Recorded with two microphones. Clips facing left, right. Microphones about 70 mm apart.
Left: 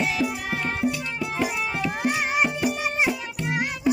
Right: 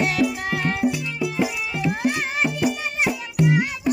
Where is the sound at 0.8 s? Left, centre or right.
Right.